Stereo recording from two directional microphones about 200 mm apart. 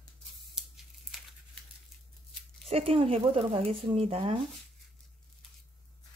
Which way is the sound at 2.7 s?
30° right (ahead or behind).